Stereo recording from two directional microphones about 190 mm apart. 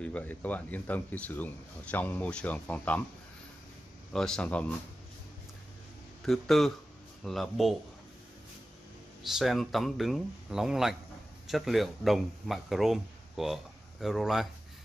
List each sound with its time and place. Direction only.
0.0 s speech: 10° left (ahead or behind)
4.1 s speech: 5° left (ahead or behind)
6.2 s speech: centre (ahead or behind)
9.3 s speech: centre (ahead or behind)